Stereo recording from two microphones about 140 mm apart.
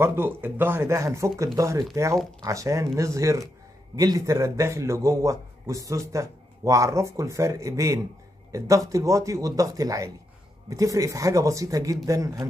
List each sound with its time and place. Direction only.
0.0 s a man's voice: 15° right (ahead or behind)